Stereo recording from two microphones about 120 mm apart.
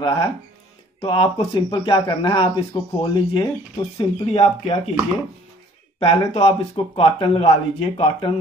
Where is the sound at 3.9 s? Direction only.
55° left (ahead or behind).